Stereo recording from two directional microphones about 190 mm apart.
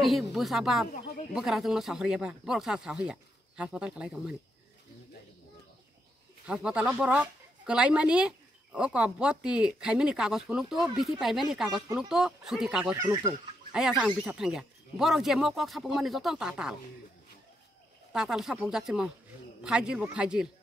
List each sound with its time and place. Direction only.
0.0 s a woman's voice: centre (ahead or behind)
6.4 s a woman's voice: 5° right (ahead or behind)
12.9 s speech: 15° right (ahead or behind)
13.7 s a woman's voice: 5° right (ahead or behind)
18.1 s a woman's voice: 5° right (ahead or behind)